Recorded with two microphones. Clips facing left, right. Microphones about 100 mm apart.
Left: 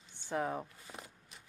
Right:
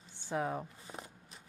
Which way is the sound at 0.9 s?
25° right (ahead or behind).